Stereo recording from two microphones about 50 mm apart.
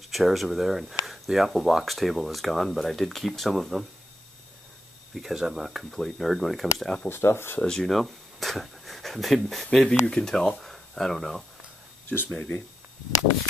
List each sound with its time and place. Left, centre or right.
0.1 s speech: centre
5.1 s speech: centre
7.1 s speech: left
7.6 s speech: centre
12.3 s speech: left